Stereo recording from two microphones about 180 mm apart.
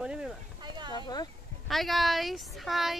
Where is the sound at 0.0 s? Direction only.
5° right (ahead or behind).